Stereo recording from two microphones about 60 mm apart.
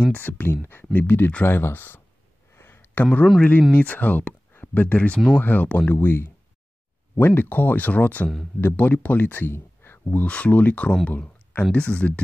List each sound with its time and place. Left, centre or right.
0.0 s speech: left
2.5 s a sound: left
3.7 s speech: left
6.0 s speech: left
11.1 s a sound: left
11.7 s speech: centre